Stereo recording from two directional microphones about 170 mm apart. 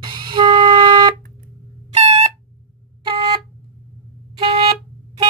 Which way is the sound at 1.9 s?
40° right (ahead or behind).